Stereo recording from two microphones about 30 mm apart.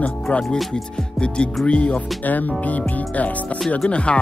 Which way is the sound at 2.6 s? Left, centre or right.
Left.